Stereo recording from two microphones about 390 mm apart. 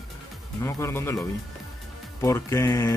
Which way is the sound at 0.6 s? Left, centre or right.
Centre.